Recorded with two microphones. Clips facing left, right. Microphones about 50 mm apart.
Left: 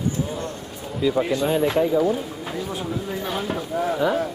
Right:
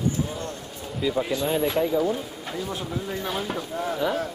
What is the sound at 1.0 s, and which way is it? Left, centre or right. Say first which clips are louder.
Speech: left 4 dB; centre.